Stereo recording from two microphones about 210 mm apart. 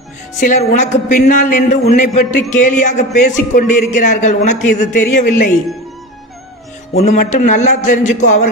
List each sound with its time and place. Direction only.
0.4 s speech: 35° left (ahead or behind)
7.0 s speech: 35° left (ahead or behind)